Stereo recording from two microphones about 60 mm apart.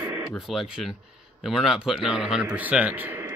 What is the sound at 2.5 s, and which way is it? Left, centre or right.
Speech, right.